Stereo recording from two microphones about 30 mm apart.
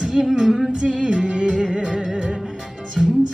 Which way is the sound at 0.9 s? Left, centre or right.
Right.